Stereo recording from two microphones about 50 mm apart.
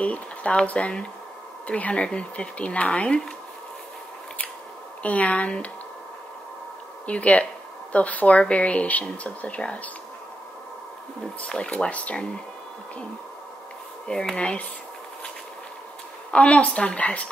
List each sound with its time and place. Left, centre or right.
0.0 s speech: left
5.0 s speech: left
7.1 s speech: left
11.4 s speech: centre
14.0 s speech: centre
16.3 s speech: left